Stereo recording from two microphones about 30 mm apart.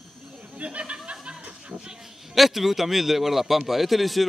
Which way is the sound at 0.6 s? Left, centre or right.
Right.